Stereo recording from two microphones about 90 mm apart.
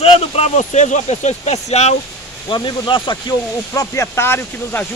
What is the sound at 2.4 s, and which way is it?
Speech, 60° left (ahead or behind).